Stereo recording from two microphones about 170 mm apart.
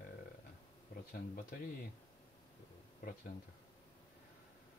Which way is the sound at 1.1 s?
60° left (ahead or behind).